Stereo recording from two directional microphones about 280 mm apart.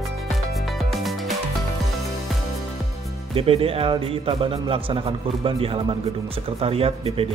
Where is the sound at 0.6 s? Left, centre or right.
Centre.